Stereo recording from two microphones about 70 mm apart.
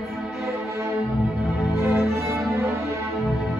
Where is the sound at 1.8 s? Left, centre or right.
Right.